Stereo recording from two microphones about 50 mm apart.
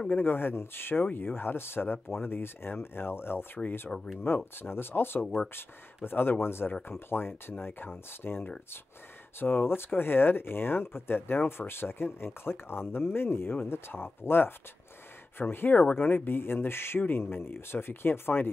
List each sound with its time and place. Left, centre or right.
0.1 s speech: left
3.9 s speech: centre
4.6 s speech: left
5.2 s speech: centre
6.0 s speech: left